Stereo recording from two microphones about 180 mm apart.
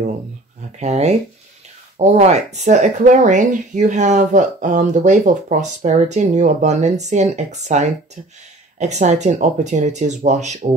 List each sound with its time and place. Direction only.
0.7 s speech: 40° right (ahead or behind)